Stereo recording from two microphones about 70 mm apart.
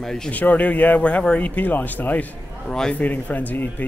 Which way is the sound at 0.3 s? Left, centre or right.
Left.